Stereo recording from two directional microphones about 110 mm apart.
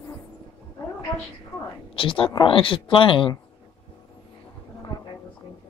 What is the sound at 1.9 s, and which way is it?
Speech, 55° left (ahead or behind).